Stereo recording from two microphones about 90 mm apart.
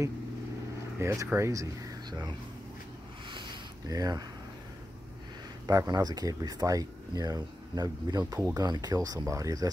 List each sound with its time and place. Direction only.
0.9 s speech: 35° right (ahead or behind)
2.0 s speech: 55° right (ahead or behind)
3.3 s a sound: 65° right (ahead or behind)
3.8 s speech: 40° right (ahead or behind)
5.7 s speech: 45° right (ahead or behind)